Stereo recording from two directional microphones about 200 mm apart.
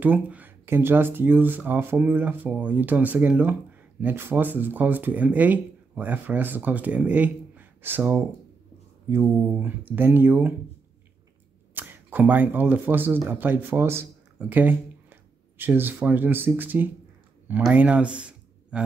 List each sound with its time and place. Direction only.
0.0 s speech: 10° right (ahead or behind)
11.7 s speech: 10° right (ahead or behind)